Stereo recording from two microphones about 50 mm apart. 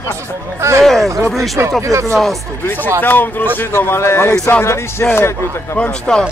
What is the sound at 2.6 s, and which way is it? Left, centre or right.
Speech, left.